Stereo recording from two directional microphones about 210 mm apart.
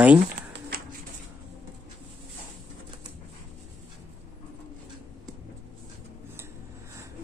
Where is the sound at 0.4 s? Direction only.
50° right (ahead or behind).